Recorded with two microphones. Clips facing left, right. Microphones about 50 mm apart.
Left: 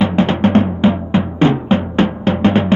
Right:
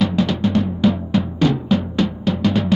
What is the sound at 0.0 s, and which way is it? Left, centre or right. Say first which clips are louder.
Music: left 4 dB; left.